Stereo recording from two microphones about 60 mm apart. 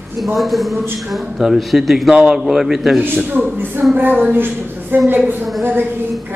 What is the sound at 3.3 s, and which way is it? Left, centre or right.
Speech, right.